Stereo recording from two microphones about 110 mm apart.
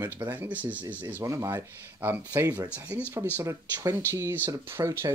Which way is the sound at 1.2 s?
25° right (ahead or behind).